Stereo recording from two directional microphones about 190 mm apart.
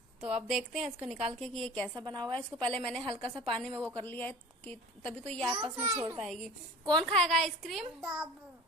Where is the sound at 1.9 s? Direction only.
25° right (ahead or behind).